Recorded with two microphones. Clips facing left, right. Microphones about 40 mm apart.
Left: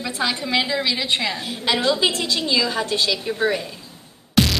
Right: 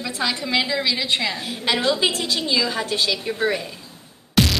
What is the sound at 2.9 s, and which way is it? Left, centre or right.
Speech, centre.